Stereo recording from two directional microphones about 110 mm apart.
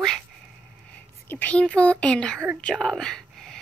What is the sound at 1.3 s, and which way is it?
Speech, 15° left (ahead or behind).